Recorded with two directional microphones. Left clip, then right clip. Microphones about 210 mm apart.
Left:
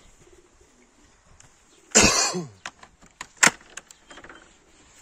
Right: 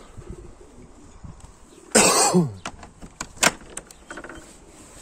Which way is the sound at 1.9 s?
15° right (ahead or behind).